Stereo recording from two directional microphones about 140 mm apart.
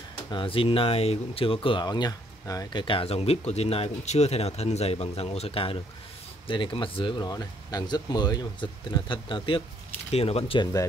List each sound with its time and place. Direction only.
0.3 s speech: 40° left (ahead or behind)
2.8 s speech: 40° left (ahead or behind)